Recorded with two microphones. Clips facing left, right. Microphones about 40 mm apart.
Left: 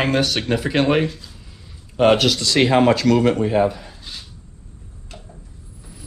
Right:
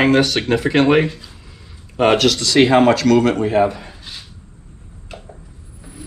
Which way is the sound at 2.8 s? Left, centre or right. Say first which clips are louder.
Right 2 dB; right.